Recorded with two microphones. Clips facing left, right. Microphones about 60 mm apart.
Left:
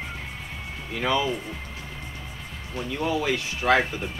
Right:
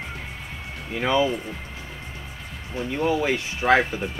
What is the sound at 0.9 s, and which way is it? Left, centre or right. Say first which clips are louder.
Speech: right 3 dB; right.